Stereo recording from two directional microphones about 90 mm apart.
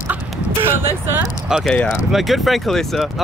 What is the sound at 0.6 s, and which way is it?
Speech, 25° right (ahead or behind).